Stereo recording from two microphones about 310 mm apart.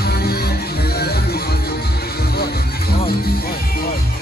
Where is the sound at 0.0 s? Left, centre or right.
Left.